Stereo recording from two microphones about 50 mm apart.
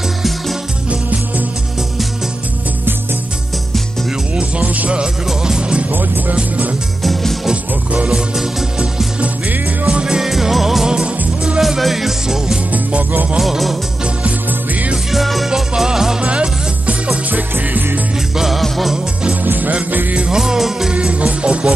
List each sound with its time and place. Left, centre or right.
4.4 s music: right
7.0 s music: centre
9.2 s music: right
11.6 s music: centre
12.7 s music: right
13.4 s music: centre
15.0 s music: centre
16.3 s music: right
17.3 s music: right
18.4 s music: centre
19.4 s music: right
20.2 s music: centre
20.9 s music: right